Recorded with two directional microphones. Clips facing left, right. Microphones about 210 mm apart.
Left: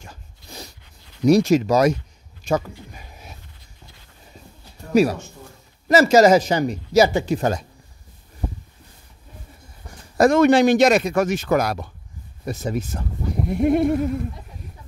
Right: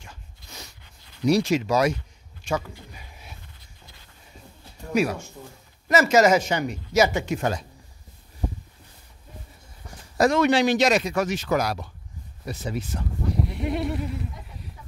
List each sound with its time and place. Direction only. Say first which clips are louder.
0.0 s a sound: left 4 dB; 35° left (ahead or behind)
1.2 s speech: left 6 dB; 45° left (ahead or behind)
5.0 s speech: left 6 dB; 35° left (ahead or behind)
10.1 s a man's voice: left 5 dB; 50° left (ahead or behind)